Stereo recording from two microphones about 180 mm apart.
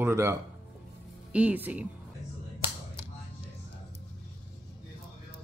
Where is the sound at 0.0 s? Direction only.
15° right (ahead or behind).